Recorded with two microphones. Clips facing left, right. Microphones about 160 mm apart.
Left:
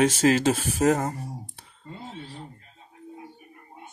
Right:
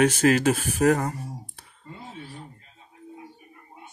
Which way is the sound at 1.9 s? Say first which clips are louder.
Left 1 dB; 25° left (ahead or behind).